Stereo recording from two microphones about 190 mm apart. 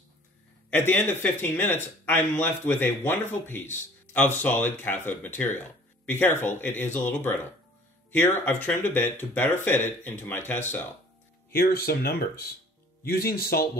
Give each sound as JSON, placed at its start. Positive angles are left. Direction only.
{"t": 0.7, "sound": "speech", "side_deg": 10}
{"t": 11.5, "sound": "speech", "side_deg": 55}